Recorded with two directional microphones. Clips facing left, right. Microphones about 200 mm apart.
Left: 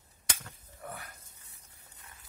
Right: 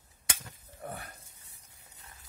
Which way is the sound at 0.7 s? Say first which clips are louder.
Right 3 dB; 30° right (ahead or behind).